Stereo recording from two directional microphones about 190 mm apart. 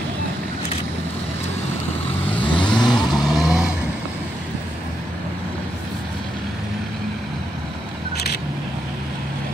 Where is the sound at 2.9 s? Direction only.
Centre (ahead or behind).